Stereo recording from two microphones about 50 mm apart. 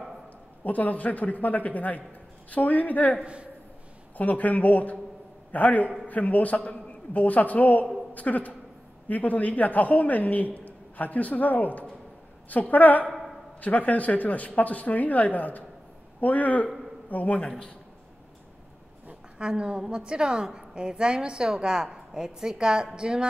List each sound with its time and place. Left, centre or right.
0.7 s a man's voice: left
4.2 s a man's voice: left
17.4 s a man's voice: centre
19.3 s a woman's voice: centre